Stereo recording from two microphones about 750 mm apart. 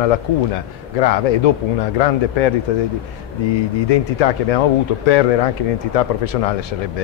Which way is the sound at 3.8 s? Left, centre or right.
Left.